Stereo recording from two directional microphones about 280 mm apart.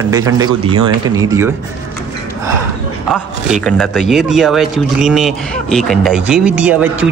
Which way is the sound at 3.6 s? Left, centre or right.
Centre.